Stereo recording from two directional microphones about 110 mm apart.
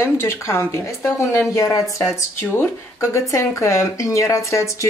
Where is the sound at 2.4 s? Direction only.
20° left (ahead or behind).